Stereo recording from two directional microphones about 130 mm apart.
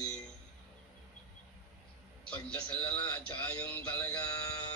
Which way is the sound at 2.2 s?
10° left (ahead or behind).